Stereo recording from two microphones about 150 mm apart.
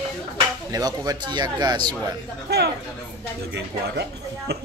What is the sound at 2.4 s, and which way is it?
Speech, 90° right.